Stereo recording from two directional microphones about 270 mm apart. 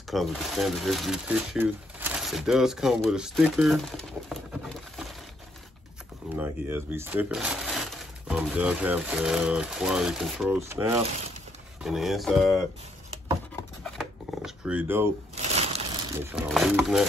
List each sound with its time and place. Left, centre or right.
0.1 s speech: centre
6.3 s speech: centre
13.8 s a sound: centre
15.3 s crumpling: right
16.2 s speech: centre